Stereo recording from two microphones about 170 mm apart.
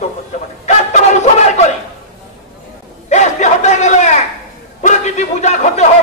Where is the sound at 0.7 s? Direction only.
40° left (ahead or behind).